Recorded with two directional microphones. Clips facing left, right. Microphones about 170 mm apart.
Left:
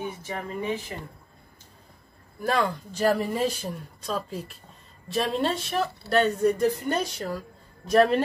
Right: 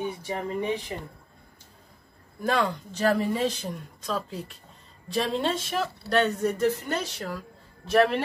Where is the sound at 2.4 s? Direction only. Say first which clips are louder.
Even; 5° left (ahead or behind).